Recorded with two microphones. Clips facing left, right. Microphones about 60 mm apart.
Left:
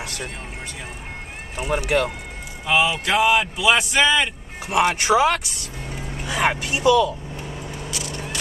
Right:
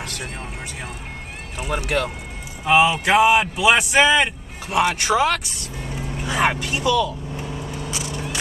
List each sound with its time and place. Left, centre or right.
1.6 s speech: centre
2.6 s speech: right
4.6 s speech: centre
6.3 s speech: centre
6.6 s speech: centre
7.4 s vehicle: centre
7.9 s a sound: right